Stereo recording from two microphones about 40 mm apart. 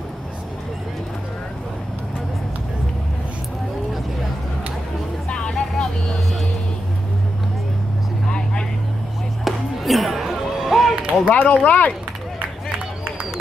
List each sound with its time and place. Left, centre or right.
5.3 s vehicle: left
9.4 s music: centre
11.2 s speech: left